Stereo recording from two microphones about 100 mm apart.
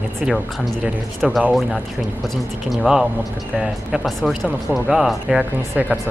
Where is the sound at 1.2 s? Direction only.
5° right (ahead or behind).